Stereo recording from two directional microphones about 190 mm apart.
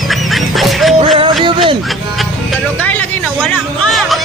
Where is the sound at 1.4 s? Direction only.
25° right (ahead or behind).